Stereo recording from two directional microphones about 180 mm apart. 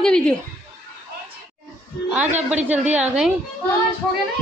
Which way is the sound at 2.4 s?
10° right (ahead or behind).